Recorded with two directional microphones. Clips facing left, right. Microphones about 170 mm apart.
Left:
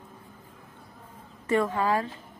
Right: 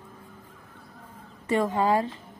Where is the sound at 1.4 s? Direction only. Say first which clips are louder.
Right 1 dB; 20° right (ahead or behind).